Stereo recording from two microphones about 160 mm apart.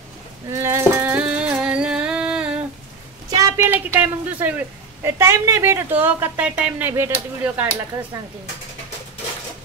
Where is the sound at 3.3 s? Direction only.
25° right (ahead or behind).